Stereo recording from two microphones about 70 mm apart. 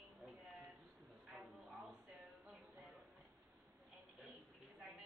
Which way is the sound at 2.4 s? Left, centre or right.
Centre.